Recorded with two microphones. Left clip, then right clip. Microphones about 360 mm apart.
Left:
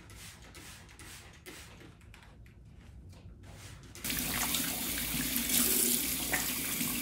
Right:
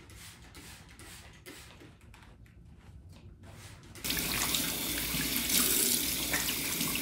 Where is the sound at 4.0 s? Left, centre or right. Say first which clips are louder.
Right 2 dB; centre.